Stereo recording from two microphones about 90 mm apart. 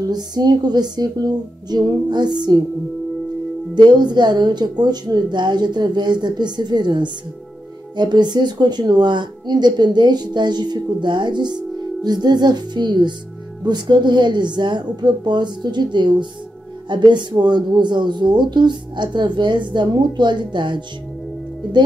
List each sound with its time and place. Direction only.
0.1 s speech: 50° right (ahead or behind)
3.7 s speech: 55° right (ahead or behind)